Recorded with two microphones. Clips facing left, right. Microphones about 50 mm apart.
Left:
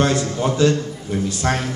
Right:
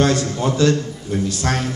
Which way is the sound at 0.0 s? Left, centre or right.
Centre.